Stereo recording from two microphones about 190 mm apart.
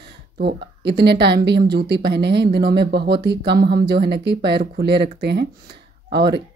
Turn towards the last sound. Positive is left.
turn(degrees=-60)  # may be behind; listen again after turning